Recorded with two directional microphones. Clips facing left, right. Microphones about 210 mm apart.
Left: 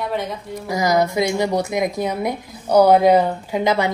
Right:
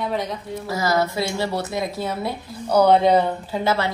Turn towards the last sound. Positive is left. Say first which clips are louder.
# left 3 dB
turn(degrees=15)  # may be behind; listen again after turning